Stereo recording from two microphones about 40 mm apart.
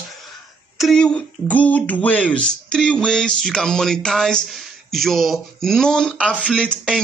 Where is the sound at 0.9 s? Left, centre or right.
Left.